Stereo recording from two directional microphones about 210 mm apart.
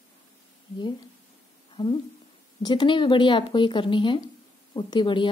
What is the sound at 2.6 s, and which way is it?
A woman's voice, 20° left (ahead or behind).